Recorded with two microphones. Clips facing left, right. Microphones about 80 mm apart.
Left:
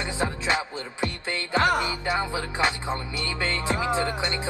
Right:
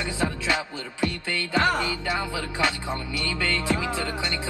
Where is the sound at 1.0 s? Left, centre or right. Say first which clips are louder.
Right 3 dB; left.